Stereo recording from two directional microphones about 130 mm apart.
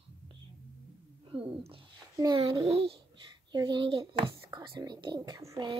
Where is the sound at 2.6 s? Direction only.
45° right (ahead or behind).